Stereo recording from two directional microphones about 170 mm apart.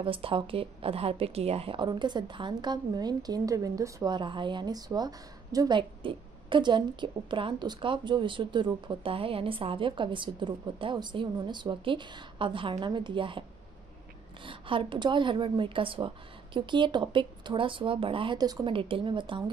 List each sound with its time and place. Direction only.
0.0 s a woman's voice: 30° right (ahead or behind)
14.4 s a woman's voice: 30° right (ahead or behind)